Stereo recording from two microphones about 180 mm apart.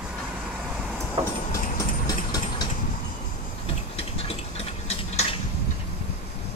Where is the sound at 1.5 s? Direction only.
20° left (ahead or behind).